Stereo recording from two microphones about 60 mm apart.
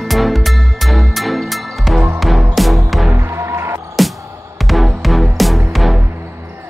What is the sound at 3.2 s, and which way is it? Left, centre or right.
Music, right.